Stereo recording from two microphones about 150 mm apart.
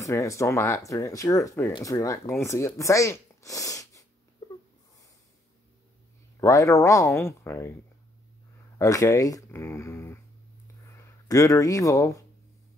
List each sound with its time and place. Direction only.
0.0 s speech: 20° left (ahead or behind)
6.4 s speech: 20° left (ahead or behind)
8.7 s speech: 20° left (ahead or behind)
11.2 s speech: 20° left (ahead or behind)